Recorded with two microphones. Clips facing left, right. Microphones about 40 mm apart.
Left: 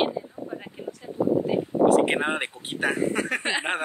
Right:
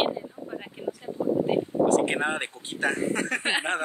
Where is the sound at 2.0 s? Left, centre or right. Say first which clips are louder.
Left 2 dB; left.